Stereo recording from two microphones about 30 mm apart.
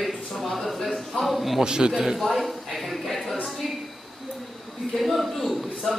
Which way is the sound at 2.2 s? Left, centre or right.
Centre.